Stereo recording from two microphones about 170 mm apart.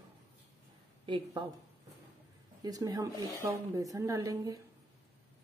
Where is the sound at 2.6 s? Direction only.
20° right (ahead or behind).